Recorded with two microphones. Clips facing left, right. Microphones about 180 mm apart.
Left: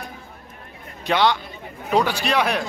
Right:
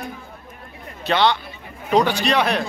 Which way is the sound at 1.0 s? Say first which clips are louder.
Right 1 dB; 10° left (ahead or behind).